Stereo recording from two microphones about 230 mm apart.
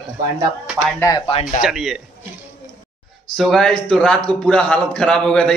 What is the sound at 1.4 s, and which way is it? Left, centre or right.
Speech, left.